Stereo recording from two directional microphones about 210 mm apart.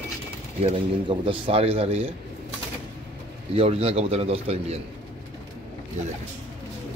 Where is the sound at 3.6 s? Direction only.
30° right (ahead or behind).